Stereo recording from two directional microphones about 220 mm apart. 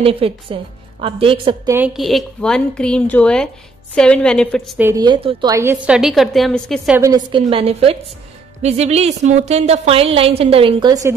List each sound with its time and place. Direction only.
0.0 s a woman's voice: 25° right (ahead or behind)
1.7 s a woman's voice: 5° right (ahead or behind)
4.7 s a woman's voice: 15° right (ahead or behind)
7.0 s a woman's voice: 15° right (ahead or behind)